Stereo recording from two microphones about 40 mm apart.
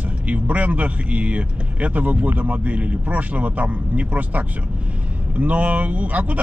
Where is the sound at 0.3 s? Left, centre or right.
Right.